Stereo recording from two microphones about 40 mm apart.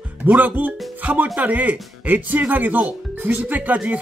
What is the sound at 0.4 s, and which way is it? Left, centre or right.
Speech, right.